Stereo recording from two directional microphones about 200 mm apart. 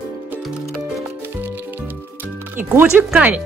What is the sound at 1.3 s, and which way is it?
Music, 10° right (ahead or behind).